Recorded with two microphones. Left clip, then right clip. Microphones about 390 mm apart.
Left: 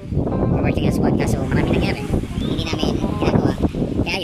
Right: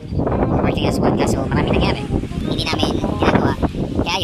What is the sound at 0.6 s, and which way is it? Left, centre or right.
Speech, centre.